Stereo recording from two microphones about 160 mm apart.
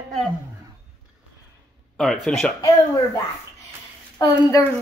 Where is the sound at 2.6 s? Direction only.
25° left (ahead or behind).